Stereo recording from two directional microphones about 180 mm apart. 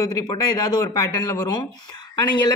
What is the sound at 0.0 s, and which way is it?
Speech, 25° left (ahead or behind).